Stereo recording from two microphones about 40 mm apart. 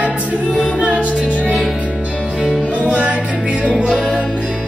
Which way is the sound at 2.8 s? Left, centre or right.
Right.